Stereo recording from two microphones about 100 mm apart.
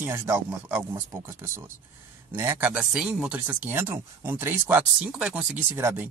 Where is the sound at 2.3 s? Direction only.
20° right (ahead or behind).